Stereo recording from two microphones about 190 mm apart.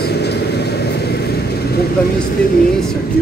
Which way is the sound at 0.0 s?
60° left (ahead or behind).